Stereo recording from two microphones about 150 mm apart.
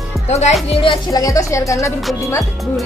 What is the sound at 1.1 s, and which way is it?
Speech, 20° left (ahead or behind).